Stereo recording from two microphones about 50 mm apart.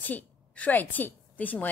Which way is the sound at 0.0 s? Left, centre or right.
Left.